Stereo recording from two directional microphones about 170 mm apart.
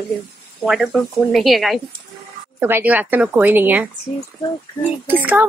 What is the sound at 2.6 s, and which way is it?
A woman's voice, 10° right (ahead or behind).